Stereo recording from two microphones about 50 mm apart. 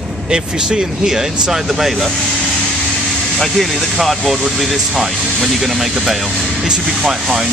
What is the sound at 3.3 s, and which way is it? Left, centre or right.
Speech, centre.